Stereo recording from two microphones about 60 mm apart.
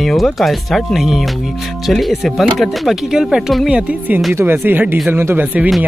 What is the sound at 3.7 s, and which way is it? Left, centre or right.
Speech, right.